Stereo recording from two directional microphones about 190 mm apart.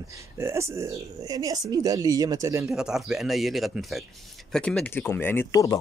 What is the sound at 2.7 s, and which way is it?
Speech, centre (ahead or behind).